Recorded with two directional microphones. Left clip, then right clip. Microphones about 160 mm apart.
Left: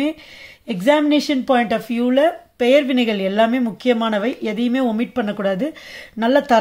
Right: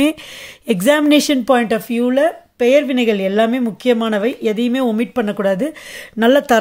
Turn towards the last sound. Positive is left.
turn(degrees=-45)  # may be behind; listen again after turning